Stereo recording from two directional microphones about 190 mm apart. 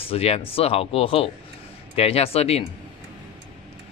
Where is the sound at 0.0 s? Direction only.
30° left (ahead or behind).